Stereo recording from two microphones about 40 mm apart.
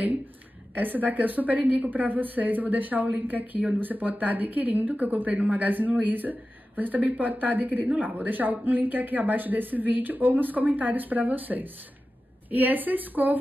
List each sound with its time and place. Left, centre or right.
0.7 s a woman's voice: right